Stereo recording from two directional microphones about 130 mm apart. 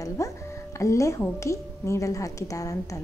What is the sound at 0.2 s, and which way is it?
A woman's voice, 25° left (ahead or behind).